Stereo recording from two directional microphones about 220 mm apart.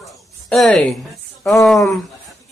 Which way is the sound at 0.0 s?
Centre (ahead or behind).